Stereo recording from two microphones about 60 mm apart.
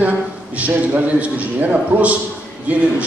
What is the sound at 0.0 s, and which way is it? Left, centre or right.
A man's voice, right.